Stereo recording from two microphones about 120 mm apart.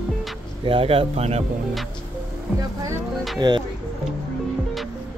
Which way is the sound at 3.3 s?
35° right (ahead or behind).